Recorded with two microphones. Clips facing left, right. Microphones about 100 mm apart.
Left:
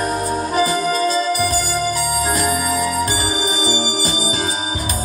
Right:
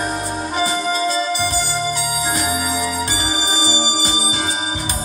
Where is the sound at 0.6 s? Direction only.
45° left (ahead or behind).